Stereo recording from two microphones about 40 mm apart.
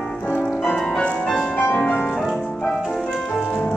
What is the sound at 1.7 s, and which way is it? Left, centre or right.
Music, centre.